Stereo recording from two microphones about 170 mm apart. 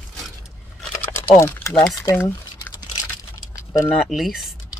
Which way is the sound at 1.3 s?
15° left (ahead or behind).